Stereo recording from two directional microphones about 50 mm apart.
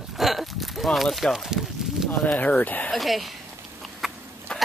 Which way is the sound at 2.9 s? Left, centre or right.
Centre.